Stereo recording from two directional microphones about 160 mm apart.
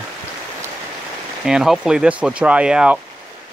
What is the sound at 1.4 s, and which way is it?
Speech, 5° right (ahead or behind).